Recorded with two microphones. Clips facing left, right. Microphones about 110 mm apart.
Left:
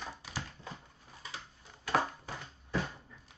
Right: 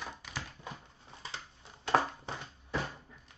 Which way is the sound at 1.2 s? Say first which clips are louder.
Right 1 dB; 25° right (ahead or behind).